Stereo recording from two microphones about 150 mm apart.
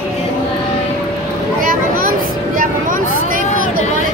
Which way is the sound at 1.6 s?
70° right (ahead or behind).